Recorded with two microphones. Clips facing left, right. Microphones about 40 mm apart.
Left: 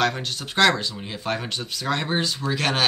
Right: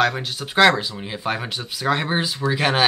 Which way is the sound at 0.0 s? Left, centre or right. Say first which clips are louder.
Right 3 dB; centre.